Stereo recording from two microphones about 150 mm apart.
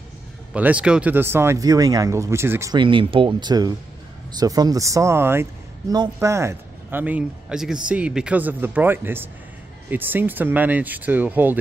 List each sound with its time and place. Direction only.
0.5 s speech: 10° right (ahead or behind)
2.7 s speech: 35° right (ahead or behind); by 11.5 s 10° right (ahead or behind)